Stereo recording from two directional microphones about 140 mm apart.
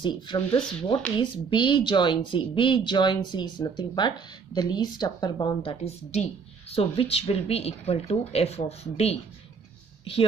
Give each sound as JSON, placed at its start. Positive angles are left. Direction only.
{"t": 0.0, "sound": "speech", "side_deg": 35}